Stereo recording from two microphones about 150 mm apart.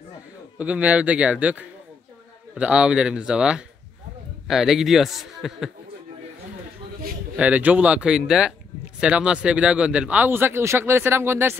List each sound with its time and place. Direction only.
0.6 s a man's voice: 10° right (ahead or behind)
7.3 s speech: 10° right (ahead or behind)